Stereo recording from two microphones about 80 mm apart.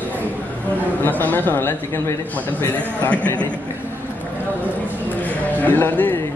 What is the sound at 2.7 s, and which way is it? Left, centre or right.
Speech, centre.